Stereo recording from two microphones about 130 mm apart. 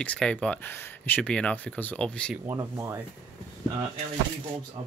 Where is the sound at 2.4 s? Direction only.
20° right (ahead or behind).